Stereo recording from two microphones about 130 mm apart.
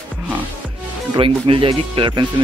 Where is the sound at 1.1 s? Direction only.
45° right (ahead or behind).